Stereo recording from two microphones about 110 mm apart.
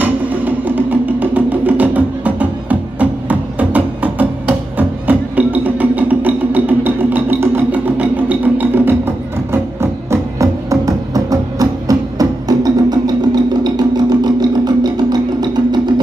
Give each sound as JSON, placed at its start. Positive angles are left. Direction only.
{"t": 0.0, "sound": "music", "side_deg": -15}